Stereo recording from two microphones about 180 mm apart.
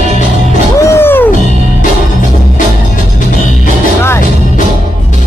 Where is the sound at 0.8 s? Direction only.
15° left (ahead or behind).